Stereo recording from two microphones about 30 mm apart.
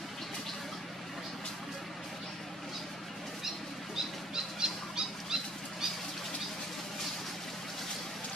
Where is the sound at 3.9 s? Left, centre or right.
Right.